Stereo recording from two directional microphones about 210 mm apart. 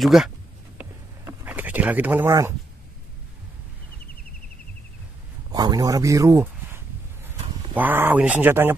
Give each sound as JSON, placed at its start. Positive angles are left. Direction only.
{"t": 0.0, "sound": "speech", "side_deg": 0}
{"t": 0.7, "sound": "a sound", "side_deg": -10}
{"t": 5.5, "sound": "speech", "side_deg": -20}